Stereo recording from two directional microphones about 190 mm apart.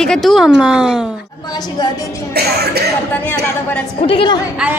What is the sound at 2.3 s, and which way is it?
Speech, 55° right (ahead or behind).